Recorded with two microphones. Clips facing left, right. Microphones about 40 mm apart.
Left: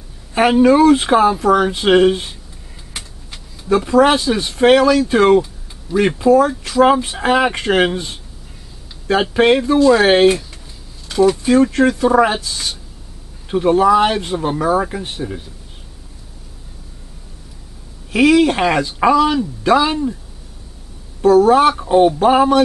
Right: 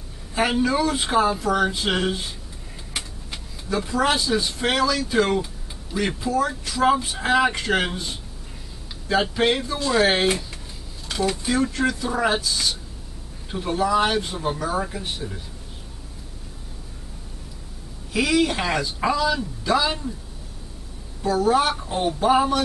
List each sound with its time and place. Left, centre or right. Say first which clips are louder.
0.3 s speech: left 10 dB; left
2.9 s vehicle: right 1 dB; centre
3.9 s speech: left 8 dB; left
9.3 s speech: left 9 dB; left
11.1 s a sound: left 11 dB; centre
11.4 s speech: left 9 dB; left
13.5 s speech: left 10 dB; left
18.1 s speech: left 9 dB; left
21.2 s speech: left 10 dB; left